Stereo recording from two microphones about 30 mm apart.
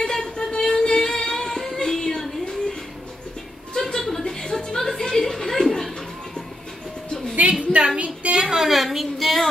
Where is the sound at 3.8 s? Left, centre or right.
Centre.